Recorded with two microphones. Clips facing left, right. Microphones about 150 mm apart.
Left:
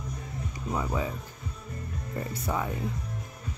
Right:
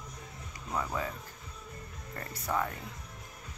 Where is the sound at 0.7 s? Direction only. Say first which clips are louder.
Left 3 dB; 15° left (ahead or behind).